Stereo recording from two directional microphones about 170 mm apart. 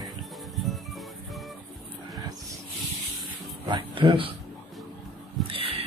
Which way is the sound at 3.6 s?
30° right (ahead or behind).